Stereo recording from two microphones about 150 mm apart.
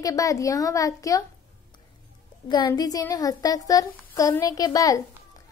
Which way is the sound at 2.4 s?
30° left (ahead or behind).